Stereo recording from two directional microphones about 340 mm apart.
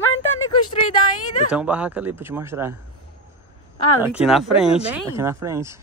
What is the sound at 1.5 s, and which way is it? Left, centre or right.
Speech, centre.